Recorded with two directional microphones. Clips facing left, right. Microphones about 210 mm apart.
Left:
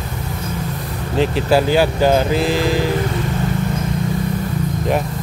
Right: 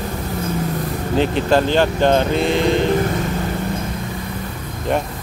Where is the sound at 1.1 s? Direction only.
5° left (ahead or behind).